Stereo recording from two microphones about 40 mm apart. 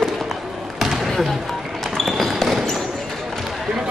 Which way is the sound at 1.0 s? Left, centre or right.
Centre.